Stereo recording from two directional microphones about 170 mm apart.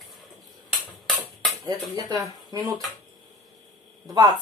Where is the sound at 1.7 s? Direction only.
25° right (ahead or behind).